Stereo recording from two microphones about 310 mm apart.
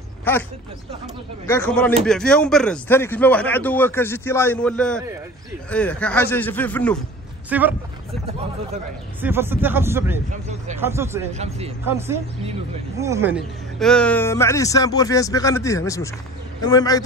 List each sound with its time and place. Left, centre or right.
0.2 s a man's voice: centre
9.2 s speech: centre
11.3 s speech: centre
12.9 s speech: centre